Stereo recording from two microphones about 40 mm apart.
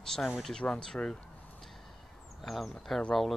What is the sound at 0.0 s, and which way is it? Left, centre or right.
Speech, centre.